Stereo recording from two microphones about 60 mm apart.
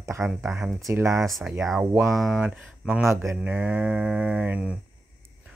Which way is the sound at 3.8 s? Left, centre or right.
Centre.